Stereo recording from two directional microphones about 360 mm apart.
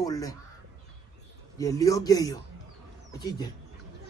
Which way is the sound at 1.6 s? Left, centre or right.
Centre.